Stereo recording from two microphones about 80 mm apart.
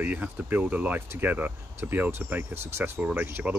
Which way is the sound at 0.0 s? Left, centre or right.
Right.